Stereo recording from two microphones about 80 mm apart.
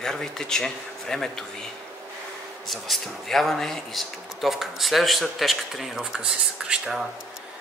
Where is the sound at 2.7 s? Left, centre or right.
Centre.